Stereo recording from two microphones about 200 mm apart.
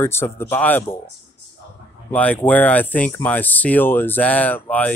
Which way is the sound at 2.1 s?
10° left (ahead or behind).